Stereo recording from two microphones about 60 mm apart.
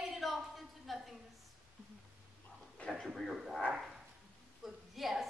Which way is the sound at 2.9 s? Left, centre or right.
Centre.